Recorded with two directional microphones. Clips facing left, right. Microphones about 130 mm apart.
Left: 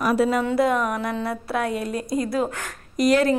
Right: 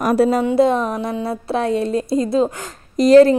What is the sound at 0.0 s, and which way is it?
Speech, 40° right (ahead or behind).